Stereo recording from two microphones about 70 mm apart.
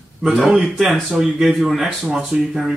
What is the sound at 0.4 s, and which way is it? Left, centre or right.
Speech, centre.